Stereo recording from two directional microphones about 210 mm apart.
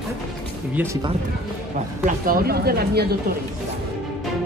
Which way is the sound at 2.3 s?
45° right (ahead or behind).